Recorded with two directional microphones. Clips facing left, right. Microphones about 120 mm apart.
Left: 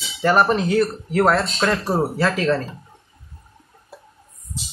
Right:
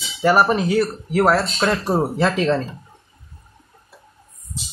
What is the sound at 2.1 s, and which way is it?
Speech, 20° right (ahead or behind).